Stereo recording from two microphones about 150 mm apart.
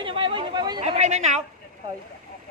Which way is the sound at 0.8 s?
45° right (ahead or behind).